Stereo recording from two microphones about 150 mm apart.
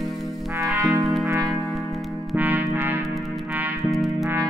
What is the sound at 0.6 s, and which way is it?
Music, 20° right (ahead or behind).